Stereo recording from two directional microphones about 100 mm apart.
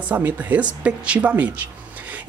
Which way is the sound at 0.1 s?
15° right (ahead or behind).